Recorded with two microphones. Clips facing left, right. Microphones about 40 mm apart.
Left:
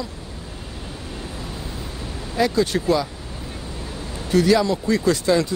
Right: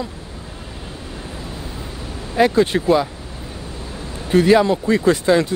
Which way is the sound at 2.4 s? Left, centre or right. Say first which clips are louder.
Right 5 dB; right.